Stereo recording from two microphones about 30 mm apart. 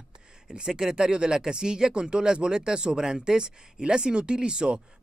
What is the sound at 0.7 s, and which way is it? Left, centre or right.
Speech, right.